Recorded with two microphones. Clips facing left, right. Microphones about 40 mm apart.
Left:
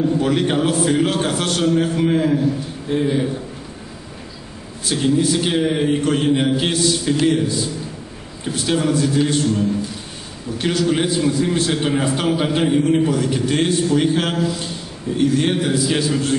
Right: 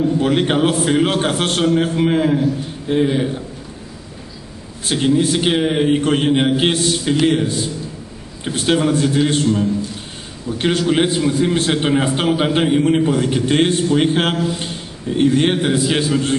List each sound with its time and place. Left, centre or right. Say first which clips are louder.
0.2 s a man's voice: right 2 dB; right
4.8 s a man's voice: right 2 dB; right